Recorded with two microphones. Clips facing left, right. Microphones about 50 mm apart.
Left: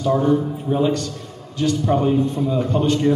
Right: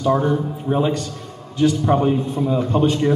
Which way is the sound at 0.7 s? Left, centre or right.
Centre.